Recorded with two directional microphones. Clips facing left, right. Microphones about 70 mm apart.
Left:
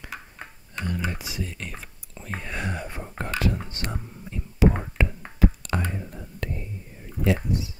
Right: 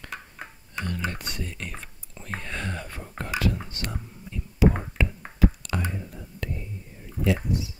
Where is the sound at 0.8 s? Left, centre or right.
Centre; by 4.4 s left.